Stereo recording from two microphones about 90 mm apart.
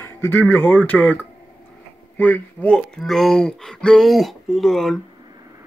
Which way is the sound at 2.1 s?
15° left (ahead or behind).